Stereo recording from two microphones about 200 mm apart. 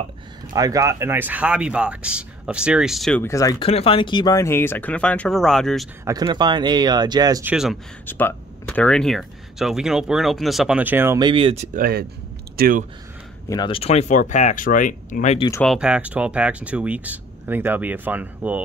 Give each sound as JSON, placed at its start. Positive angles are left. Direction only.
{"t": 0.5, "sound": "speech", "side_deg": -15}
{"t": 3.3, "sound": "speech", "side_deg": 15}
{"t": 6.0, "sound": "speech", "side_deg": -20}
{"t": 8.1, "sound": "speech", "side_deg": 10}
{"t": 11.1, "sound": "speech", "side_deg": -25}
{"t": 11.7, "sound": "speech", "side_deg": -50}
{"t": 13.5, "sound": "speech", "side_deg": 25}
{"t": 15.6, "sound": "speech", "side_deg": 0}